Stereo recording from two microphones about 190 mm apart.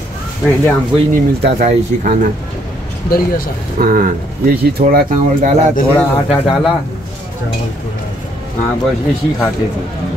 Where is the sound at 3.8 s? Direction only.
45° right (ahead or behind).